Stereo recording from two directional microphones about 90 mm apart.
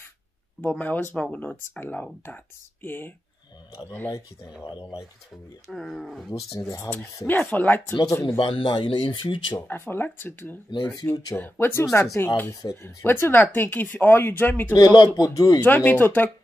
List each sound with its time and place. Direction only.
0.6 s speech: 15° left (ahead or behind)
5.7 s speech: centre (ahead or behind)
7.2 s speech: 20° left (ahead or behind)
7.9 s speech: 45° left (ahead or behind)
8.4 s speech: 75° left (ahead or behind)
9.6 s speech: 25° left (ahead or behind)
14.7 s speech: 50° left (ahead or behind)
15.6 s speech: 20° left (ahead or behind)